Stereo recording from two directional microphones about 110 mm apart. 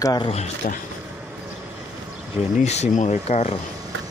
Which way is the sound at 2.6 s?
85° left.